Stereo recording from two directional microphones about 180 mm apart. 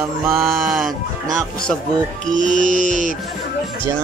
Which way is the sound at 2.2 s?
45° right (ahead or behind).